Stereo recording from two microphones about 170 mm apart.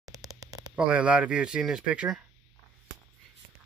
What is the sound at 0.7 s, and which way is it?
Speech, 5° right (ahead or behind).